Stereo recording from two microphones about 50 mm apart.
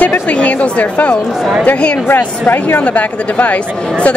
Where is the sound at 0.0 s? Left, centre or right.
Left.